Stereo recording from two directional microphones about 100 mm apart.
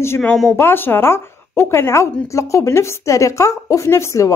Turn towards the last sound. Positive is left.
turn(degrees=30)  # may be behind; listen again after turning